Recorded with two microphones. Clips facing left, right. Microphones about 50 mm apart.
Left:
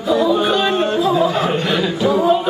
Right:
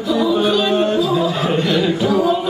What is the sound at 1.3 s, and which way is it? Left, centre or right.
Chuckle, centre.